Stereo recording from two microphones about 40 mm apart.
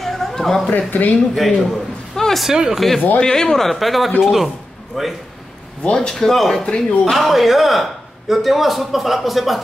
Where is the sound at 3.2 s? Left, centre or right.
Centre.